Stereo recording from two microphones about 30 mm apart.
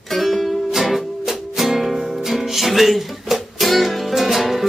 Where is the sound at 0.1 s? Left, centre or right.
Centre.